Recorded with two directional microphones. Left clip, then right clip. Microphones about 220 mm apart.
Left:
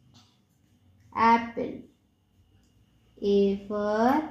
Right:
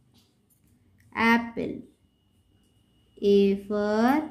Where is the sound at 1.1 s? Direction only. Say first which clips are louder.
Left 2 dB; 35° right (ahead or behind).